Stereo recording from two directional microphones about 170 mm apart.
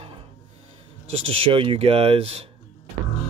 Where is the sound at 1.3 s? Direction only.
35° right (ahead or behind).